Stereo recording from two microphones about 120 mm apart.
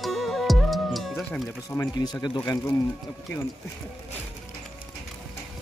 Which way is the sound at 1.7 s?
20° left (ahead or behind).